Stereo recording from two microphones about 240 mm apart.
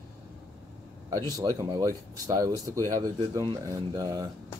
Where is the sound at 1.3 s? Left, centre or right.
Centre.